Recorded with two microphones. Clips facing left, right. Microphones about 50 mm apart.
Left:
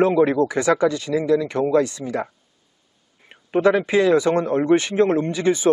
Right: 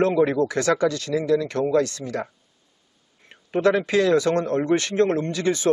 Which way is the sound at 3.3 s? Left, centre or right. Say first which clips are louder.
Left 3 dB; centre.